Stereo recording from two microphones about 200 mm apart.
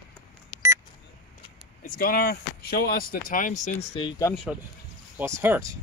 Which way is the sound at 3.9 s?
25° left (ahead or behind).